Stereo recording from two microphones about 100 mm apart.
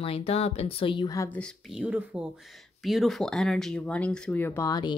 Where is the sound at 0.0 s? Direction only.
75° left (ahead or behind).